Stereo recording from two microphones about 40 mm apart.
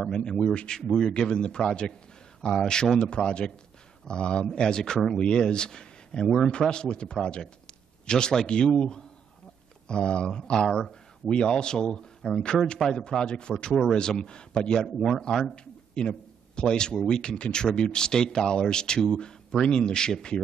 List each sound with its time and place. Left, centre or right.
0.1 s a man's voice: left
13.2 s speech: left
15.0 s a man's voice: centre
15.5 s a man's voice: left